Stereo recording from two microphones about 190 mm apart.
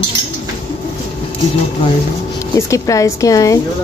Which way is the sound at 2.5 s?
15° left (ahead or behind).